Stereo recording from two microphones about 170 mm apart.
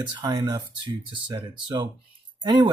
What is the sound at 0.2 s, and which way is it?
Speech, 25° right (ahead or behind).